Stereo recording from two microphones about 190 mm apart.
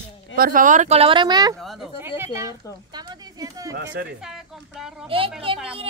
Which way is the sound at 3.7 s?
65° right (ahead or behind).